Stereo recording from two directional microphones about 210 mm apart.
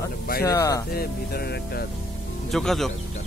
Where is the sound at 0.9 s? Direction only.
50° left (ahead or behind).